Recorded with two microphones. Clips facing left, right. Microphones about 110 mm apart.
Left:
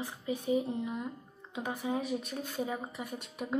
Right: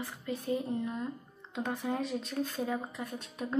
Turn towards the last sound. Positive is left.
turn(degrees=10)  # may be behind; listen again after turning